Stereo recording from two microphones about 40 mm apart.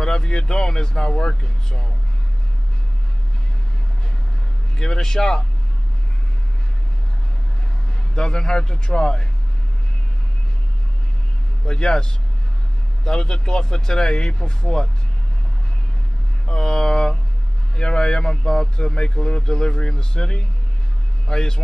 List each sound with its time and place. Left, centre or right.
0.0 s speech: centre
4.7 s speech: centre
8.1 s speech: centre
11.6 s speech: centre
16.4 s speech: centre